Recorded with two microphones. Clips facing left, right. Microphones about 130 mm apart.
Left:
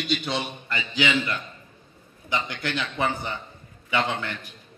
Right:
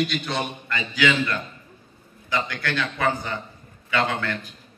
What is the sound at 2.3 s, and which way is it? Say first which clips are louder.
Speech: right 2 dB; 20° left (ahead or behind).